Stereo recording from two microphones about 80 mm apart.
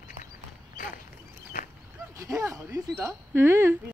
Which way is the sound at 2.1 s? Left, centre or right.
Right.